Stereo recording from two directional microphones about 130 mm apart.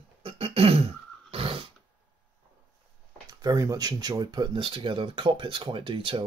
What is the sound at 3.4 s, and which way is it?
Speech, 30° right (ahead or behind).